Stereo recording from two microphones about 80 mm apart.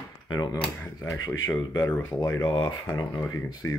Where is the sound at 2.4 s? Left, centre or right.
Left.